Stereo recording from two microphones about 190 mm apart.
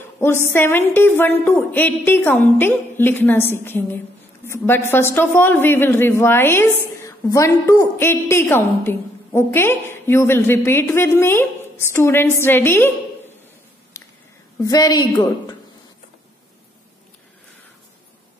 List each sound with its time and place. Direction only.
0.2 s a man's voice: 10° left (ahead or behind)
13.9 s a sound: 15° left (ahead or behind)
14.6 s a woman's voice: 20° left (ahead or behind)